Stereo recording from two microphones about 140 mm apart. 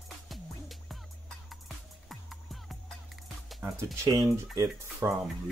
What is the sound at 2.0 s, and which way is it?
Music, centre (ahead or behind).